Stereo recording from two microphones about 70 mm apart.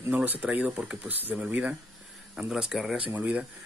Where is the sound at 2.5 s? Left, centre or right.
Centre.